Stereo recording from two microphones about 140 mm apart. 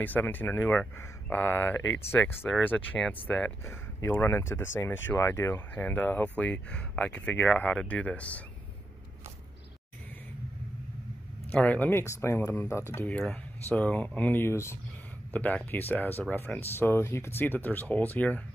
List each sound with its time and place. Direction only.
0.0 s speech: 15° left (ahead or behind)
11.5 s speech: 10° left (ahead or behind)